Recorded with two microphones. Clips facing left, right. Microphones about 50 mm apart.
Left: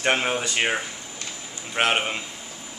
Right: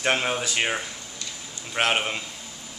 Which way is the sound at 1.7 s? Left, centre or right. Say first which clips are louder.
Left 1 dB; centre.